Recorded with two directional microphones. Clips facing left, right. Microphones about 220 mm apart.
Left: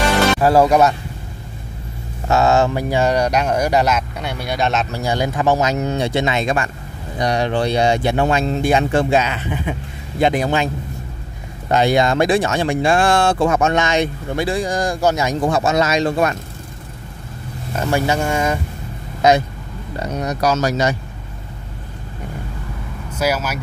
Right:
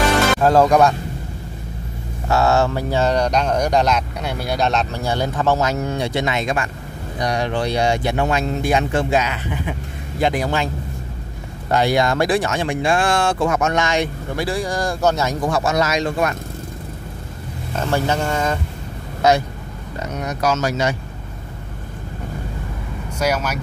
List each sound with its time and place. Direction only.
0.4 s speech: 10° left (ahead or behind)
2.2 s speech: 20° left (ahead or behind)
11.7 s speech: 20° left (ahead or behind)
15.4 s speech: 25° left (ahead or behind)
17.7 s speech: 10° left (ahead or behind)
20.0 s speech: 35° left (ahead or behind)
23.1 s speech: 5° left (ahead or behind)